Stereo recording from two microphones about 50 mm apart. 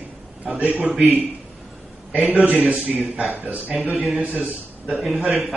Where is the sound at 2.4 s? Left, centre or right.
Right.